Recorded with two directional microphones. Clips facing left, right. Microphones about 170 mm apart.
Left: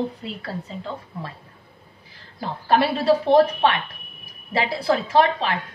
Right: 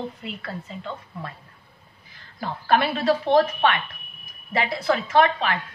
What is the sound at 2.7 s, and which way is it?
A woman's voice, 35° left (ahead or behind).